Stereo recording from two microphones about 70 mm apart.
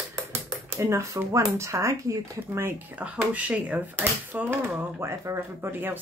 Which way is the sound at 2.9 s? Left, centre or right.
Centre.